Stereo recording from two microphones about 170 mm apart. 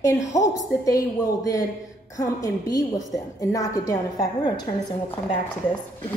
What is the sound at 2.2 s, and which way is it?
A woman's voice, 20° left (ahead or behind).